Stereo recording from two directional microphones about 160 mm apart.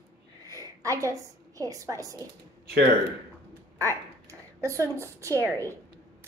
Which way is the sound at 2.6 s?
80° right.